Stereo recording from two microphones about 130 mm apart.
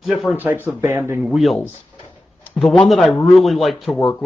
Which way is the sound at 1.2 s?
Centre (ahead or behind).